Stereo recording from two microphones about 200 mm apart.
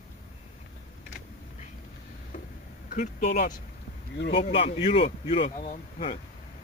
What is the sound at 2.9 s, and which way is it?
Speech, 45° left (ahead or behind).